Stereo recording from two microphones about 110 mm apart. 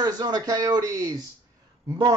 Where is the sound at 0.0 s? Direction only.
35° right (ahead or behind).